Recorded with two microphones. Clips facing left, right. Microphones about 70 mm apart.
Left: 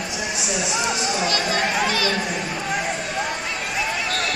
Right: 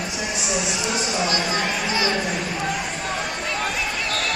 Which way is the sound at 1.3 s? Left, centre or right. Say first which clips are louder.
Left 1 dB; left.